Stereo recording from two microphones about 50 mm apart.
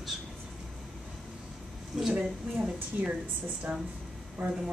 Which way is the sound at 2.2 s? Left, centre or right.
Centre.